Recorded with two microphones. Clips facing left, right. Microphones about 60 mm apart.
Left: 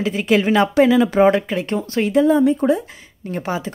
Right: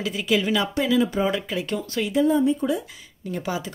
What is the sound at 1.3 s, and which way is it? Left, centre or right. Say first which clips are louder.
Speech: left 8 dB; left.